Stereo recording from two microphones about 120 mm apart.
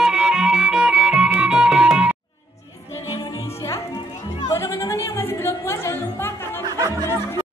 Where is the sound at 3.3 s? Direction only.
25° left (ahead or behind).